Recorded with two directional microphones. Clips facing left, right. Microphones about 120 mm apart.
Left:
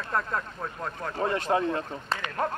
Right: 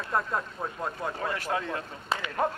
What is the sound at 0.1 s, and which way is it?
Speech, 15° right (ahead or behind).